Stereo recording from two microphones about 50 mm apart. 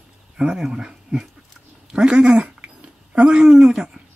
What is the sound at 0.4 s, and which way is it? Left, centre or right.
Speech, centre.